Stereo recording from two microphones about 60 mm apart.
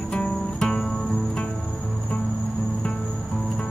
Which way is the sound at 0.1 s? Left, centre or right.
Centre.